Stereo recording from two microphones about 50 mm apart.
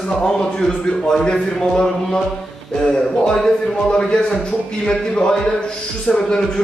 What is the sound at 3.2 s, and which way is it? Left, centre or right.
A man's voice, centre.